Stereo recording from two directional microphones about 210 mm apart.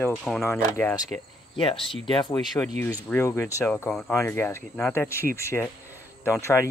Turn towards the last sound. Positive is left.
turn(degrees=15)  # may be behind; listen again after turning